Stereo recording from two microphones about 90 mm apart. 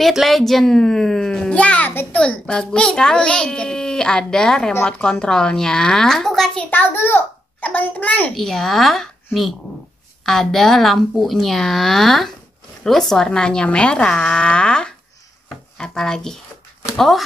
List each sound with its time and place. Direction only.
0.0 s a child's voice: centre (ahead or behind)
6.7 s a child's voice: 20° left (ahead or behind)
8.4 s a child's voice: 5° left (ahead or behind)